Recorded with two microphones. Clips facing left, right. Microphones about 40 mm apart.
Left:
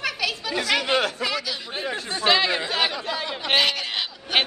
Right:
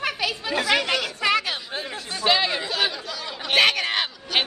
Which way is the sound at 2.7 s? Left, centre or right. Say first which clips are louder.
Left 1 dB; left.